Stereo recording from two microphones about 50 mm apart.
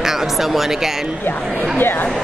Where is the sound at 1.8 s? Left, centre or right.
Left.